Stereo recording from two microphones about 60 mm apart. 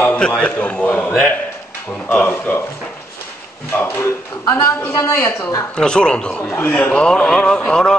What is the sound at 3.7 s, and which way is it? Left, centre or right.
Speech, left.